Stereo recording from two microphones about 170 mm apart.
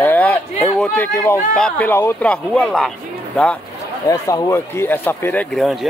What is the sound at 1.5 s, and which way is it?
Speech, 5° left (ahead or behind).